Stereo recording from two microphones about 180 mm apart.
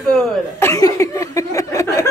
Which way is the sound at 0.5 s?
15° left (ahead or behind).